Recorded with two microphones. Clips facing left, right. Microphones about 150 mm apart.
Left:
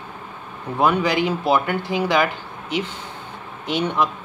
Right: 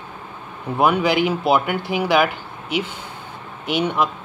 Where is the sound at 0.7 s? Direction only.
10° right (ahead or behind).